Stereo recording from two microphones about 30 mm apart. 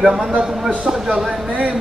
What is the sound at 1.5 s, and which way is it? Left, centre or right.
Speech, right.